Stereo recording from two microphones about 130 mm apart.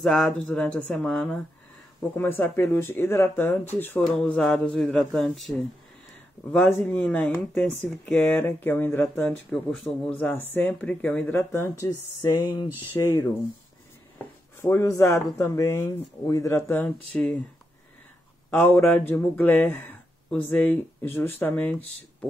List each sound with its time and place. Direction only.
0.0 s speech: 5° left (ahead or behind)
6.5 s speech: 10° left (ahead or behind)
12.9 s speech: 25° left (ahead or behind)
18.5 s speech: 15° left (ahead or behind)